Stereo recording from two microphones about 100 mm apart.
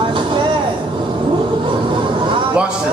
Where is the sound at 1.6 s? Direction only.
55° right (ahead or behind).